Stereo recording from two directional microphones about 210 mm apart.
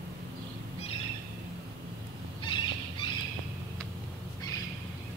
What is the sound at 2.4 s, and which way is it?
Cat, 20° left (ahead or behind).